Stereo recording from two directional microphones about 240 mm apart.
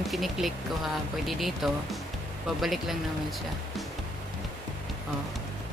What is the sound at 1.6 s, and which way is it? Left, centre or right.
Speech, centre.